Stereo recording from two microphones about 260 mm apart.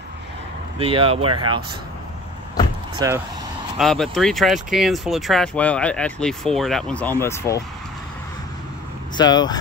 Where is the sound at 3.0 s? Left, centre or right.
Centre.